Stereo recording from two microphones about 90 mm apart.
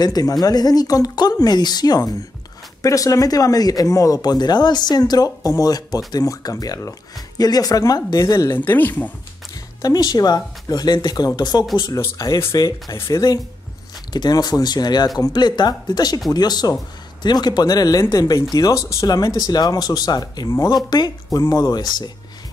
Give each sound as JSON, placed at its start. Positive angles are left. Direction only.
{"t": 0.0, "sound": "speech", "side_deg": 45}
{"t": 8.5, "sound": "speech", "side_deg": 20}
{"t": 9.8, "sound": "speech", "side_deg": 45}
{"t": 12.2, "sound": "speech", "side_deg": 35}
{"t": 12.9, "sound": "speech", "side_deg": 30}
{"t": 14.1, "sound": "speech", "side_deg": 50}